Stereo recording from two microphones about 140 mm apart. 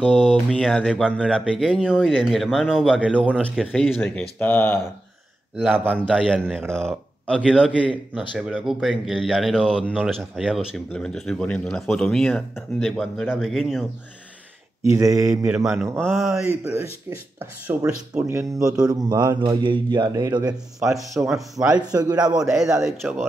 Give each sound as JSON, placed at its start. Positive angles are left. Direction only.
{"t": 0.1, "sound": "speech", "side_deg": -5}
{"t": 4.0, "sound": "speech", "side_deg": 10}
{"t": 5.6, "sound": "speech", "side_deg": -10}
{"t": 7.3, "sound": "speech", "side_deg": -5}
{"t": 14.8, "sound": "speech", "side_deg": -25}
{"t": 15.4, "sound": "speech", "side_deg": -5}
{"t": 16.4, "sound": "speech", "side_deg": -15}
{"t": 18.3, "sound": "speech", "side_deg": -20}
{"t": 21.3, "sound": "speech", "side_deg": 0}
{"t": 21.9, "sound": "speech", "side_deg": -25}
{"t": 22.3, "sound": "speech", "side_deg": 0}